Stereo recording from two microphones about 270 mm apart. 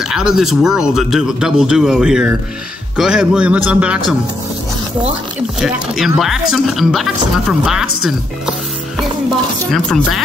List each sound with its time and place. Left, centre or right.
0.0 s speech: centre
5.6 s speech: centre
9.7 s speech: centre